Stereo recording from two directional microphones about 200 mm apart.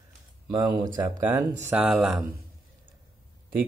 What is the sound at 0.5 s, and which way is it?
A man's voice, 20° right (ahead or behind).